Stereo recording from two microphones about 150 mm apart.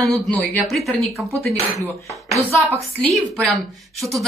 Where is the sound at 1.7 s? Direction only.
20° left (ahead or behind).